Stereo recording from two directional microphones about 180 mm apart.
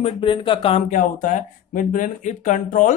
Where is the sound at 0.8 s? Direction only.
45° left (ahead or behind).